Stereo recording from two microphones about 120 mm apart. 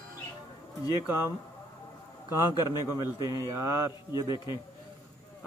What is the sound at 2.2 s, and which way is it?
Speech, 35° left (ahead or behind).